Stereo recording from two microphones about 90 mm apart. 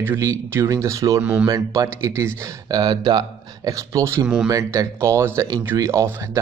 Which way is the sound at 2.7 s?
50° right (ahead or behind).